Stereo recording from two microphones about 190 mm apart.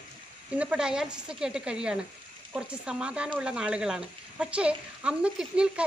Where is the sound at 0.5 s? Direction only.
5° right (ahead or behind).